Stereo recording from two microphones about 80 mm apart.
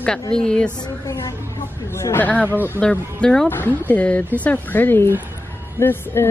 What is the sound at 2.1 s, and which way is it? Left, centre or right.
A woman's voice, centre.